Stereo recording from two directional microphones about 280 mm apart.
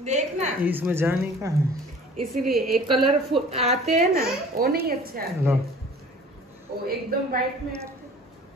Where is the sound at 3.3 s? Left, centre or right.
Right.